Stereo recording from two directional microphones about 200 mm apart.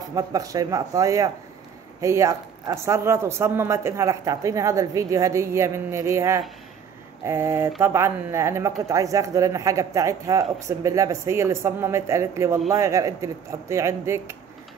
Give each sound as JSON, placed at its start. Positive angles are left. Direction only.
{"t": 0.1, "sound": "speech", "side_deg": -15}